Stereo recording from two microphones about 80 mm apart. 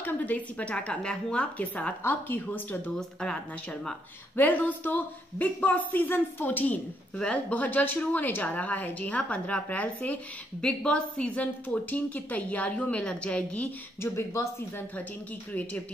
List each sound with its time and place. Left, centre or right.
0.0 s a woman's voice: centre
3.0 s a woman's voice: centre
4.4 s a woman's voice: left
14.0 s speech: left